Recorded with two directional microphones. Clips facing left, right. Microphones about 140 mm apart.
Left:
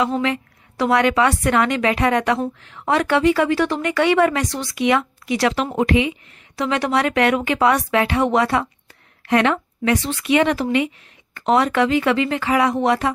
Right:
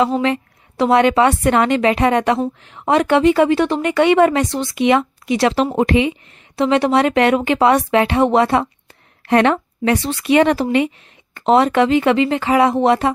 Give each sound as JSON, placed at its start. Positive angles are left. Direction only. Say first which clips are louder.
{"t": 0.0, "sound": "a woman's voice", "louder": "right 4 dB", "side_deg": -30}